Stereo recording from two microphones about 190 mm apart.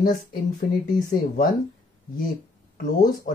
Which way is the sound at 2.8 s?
40° left (ahead or behind).